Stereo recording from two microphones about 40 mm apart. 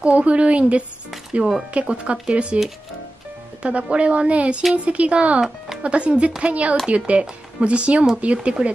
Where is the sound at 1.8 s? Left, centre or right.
Right.